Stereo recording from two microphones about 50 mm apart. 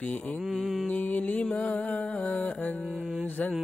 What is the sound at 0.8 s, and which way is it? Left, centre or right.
Music, left.